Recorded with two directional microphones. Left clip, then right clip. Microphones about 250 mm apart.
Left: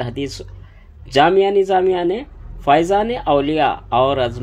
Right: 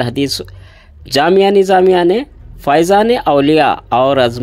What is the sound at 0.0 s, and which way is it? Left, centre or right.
Speech, right.